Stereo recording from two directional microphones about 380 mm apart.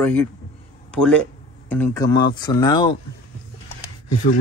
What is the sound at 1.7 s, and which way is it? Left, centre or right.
Speech, centre.